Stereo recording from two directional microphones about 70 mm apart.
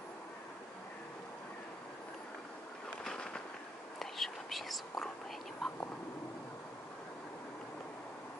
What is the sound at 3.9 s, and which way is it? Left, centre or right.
Whispering, centre.